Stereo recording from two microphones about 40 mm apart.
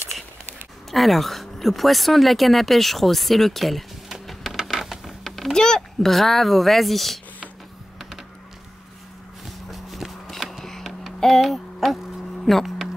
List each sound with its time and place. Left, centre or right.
0.9 s speech: centre
4.6 s a sound: centre
5.5 s speech: centre
5.9 s speech: centre
9.7 s a sound: centre
12.6 s music: centre